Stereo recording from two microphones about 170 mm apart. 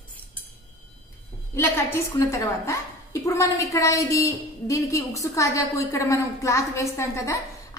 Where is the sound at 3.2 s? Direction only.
20° left (ahead or behind).